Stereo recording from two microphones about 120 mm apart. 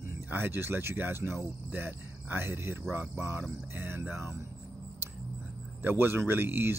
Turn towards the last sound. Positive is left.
turn(degrees=-20)  # may be behind; listen again after turning